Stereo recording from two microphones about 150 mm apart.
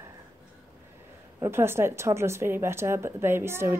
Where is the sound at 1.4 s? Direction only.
15° right (ahead or behind).